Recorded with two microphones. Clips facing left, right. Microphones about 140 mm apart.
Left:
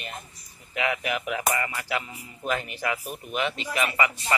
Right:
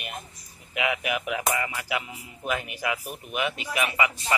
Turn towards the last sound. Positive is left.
turn(degrees=-5)  # may be behind; listen again after turning